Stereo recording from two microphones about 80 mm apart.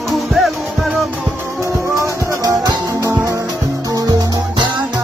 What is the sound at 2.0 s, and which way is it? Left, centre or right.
Music, right.